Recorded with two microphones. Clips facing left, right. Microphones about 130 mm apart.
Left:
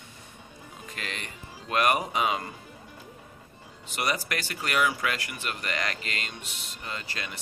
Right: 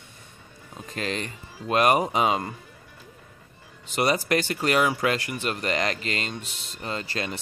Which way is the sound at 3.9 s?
30° right (ahead or behind).